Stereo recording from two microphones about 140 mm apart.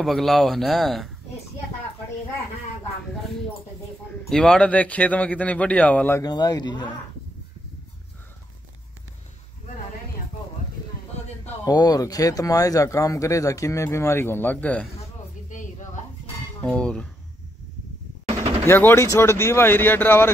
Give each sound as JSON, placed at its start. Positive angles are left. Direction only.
{"t": 0.0, "sound": "speech", "side_deg": 0}
{"t": 4.3, "sound": "a man's voice", "side_deg": 5}
{"t": 6.2, "sound": "speech", "side_deg": 30}
{"t": 11.6, "sound": "speech", "side_deg": 30}
{"t": 16.6, "sound": "a man's voice", "side_deg": 5}
{"t": 18.7, "sound": "a man's voice", "side_deg": 15}